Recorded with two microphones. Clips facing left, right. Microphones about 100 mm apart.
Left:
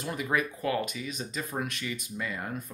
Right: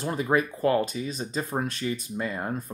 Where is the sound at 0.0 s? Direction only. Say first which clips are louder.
Right 5 dB; 35° right (ahead or behind).